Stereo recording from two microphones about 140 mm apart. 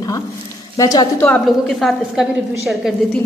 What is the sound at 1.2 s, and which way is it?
A woman's voice, 5° left (ahead or behind).